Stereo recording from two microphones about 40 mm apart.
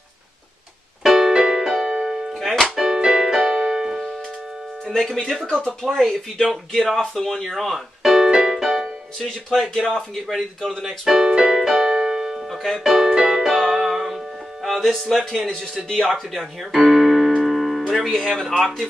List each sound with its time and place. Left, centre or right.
1.0 s music: centre
2.3 s music: centre
2.6 s keyboard: centre
4.8 s speech: centre
7.5 s keyboard: centre
9.5 s speech: centre
10.8 s speech: centre
11.2 s keyboard: centre
11.9 s keyboard: centre
12.4 s speech: centre
12.8 s music: centre
16.1 s speech: centre
16.9 s keyboard: centre
18.1 s speech: centre